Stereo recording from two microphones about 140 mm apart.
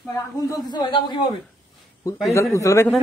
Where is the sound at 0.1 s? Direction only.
25° left (ahead or behind).